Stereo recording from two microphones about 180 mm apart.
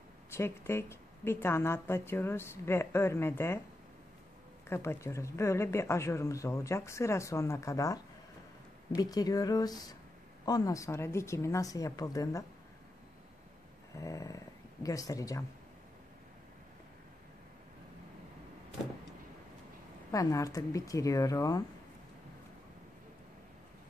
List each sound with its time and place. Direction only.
0.3 s a woman's voice: 15° left (ahead or behind)
4.6 s a woman's voice: 15° left (ahead or behind)
13.9 s speech: 20° left (ahead or behind)
20.1 s speech: 20° left (ahead or behind)